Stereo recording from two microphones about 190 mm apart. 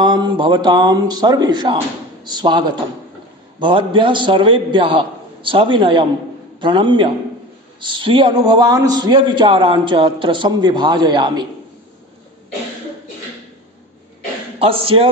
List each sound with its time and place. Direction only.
0.0 s a man's voice: 25° right (ahead or behind)
14.6 s a man's voice: 30° right (ahead or behind)